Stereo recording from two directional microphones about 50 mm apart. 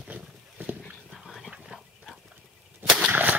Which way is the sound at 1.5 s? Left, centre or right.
Centre.